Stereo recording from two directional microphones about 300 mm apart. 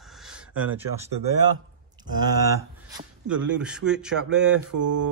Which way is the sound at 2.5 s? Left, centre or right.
Centre.